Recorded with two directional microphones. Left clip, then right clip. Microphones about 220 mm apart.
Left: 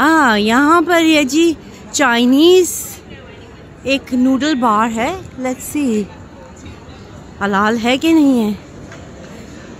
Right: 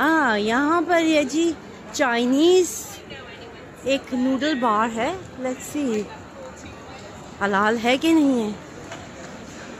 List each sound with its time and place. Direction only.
0.0 s a woman's voice: 30° left (ahead or behind)
3.8 s speech: 25° left (ahead or behind)
7.3 s speech: 20° left (ahead or behind)